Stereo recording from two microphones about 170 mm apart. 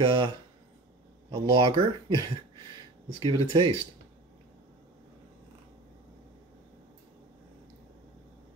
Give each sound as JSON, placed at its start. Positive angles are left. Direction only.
{"t": 0.0, "sound": "speech", "side_deg": -30}
{"t": 1.3, "sound": "speech", "side_deg": -25}